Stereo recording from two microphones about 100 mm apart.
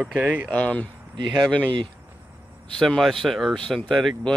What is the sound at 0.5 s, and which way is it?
Speech, 15° left (ahead or behind).